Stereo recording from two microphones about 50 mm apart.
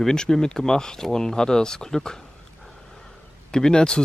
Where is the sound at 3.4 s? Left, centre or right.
Centre.